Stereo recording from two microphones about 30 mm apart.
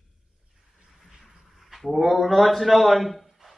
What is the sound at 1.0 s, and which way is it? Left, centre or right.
A man's voice, centre.